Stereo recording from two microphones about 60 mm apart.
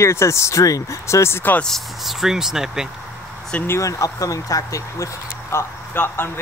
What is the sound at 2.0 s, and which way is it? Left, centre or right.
Speech, centre.